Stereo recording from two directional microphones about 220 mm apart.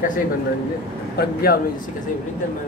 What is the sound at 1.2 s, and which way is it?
Speech, 45° left (ahead or behind).